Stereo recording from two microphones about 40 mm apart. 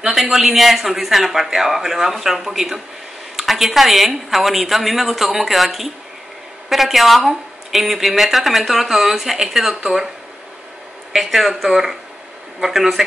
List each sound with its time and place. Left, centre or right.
0.1 s speech: centre
11.1 s speech: centre